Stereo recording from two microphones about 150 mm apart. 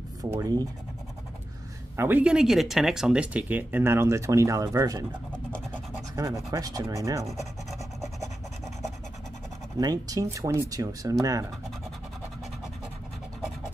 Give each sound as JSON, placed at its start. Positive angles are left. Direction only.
{"t": 0.4, "sound": "speech", "side_deg": -25}
{"t": 2.0, "sound": "speech", "side_deg": -10}
{"t": 9.8, "sound": "speech", "side_deg": -25}